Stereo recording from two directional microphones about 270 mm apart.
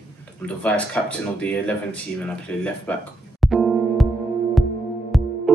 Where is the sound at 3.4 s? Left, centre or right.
Centre.